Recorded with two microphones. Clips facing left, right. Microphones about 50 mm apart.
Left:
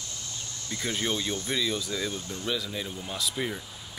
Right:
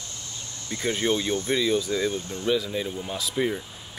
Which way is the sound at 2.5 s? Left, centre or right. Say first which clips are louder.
Right 7 dB; centre.